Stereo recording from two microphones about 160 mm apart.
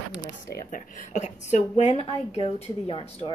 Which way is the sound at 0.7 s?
50° left (ahead or behind).